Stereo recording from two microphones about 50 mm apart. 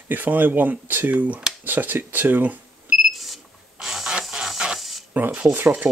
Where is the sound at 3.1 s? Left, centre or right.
Centre.